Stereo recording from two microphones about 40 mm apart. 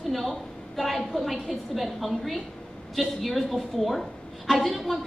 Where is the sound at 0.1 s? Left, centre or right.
Centre.